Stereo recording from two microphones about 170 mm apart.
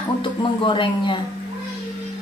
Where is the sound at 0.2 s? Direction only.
30° left (ahead or behind).